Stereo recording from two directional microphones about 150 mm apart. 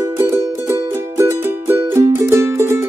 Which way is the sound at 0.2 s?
15° right (ahead or behind).